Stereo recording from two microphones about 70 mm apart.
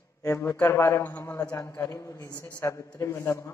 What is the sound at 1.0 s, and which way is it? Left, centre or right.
Speech, left.